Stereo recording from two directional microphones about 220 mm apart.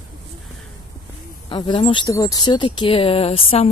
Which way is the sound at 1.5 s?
20° left (ahead or behind).